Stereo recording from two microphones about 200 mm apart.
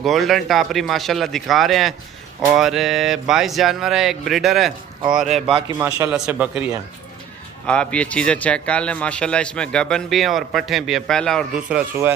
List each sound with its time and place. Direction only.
0.0 s a man's voice: centre (ahead or behind)
7.6 s a man's voice: 5° left (ahead or behind)